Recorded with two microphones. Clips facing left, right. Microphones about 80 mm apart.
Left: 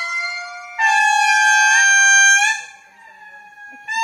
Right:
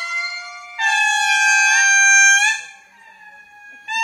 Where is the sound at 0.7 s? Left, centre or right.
Centre.